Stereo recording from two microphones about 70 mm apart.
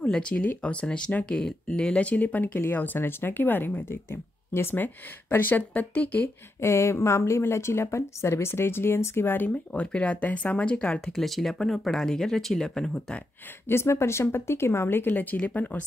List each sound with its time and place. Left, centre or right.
0.0 s speech: centre
6.6 s speech: left
9.7 s speech: centre
11.1 s speech: centre
13.7 s speech: left